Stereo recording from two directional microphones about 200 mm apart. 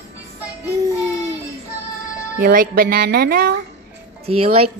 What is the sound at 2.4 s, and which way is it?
Speech, 45° right (ahead or behind).